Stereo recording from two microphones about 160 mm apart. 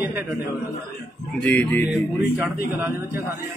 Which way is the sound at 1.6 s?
10° left (ahead or behind).